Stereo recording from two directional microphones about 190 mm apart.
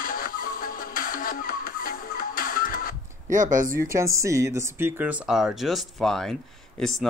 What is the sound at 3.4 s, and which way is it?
Speech, 45° right (ahead or behind).